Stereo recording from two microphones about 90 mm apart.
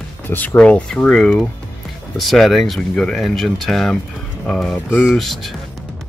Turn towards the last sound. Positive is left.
turn(degrees=0)  # may be behind; listen again after turning